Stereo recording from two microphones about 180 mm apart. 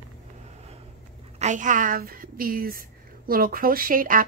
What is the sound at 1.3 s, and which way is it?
A woman's voice, 40° right (ahead or behind).